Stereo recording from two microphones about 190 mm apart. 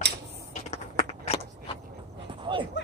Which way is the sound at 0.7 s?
35° left (ahead or behind).